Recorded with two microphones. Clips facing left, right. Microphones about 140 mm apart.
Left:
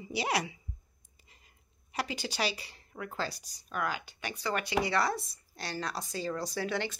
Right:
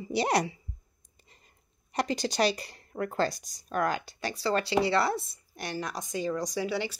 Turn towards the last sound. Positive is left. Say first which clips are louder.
# right 3 dB
turn(degrees=-10)  # may be behind; listen again after turning